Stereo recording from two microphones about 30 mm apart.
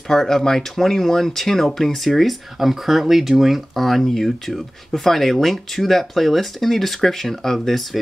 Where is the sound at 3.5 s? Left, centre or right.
Centre.